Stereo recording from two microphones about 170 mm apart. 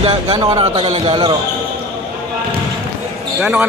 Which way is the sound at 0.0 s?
30° right (ahead or behind).